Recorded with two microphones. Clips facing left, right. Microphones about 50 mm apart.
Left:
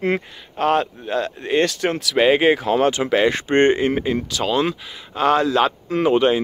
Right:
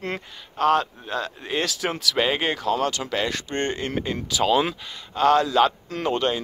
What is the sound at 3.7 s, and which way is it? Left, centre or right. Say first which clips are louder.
Speech: left 7 dB; centre.